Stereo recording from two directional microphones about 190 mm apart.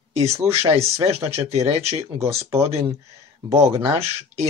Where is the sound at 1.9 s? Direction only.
35° right (ahead or behind).